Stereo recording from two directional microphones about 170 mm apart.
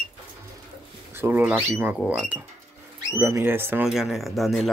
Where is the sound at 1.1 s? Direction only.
15° right (ahead or behind).